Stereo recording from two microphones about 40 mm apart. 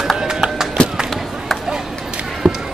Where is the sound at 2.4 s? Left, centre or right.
Centre.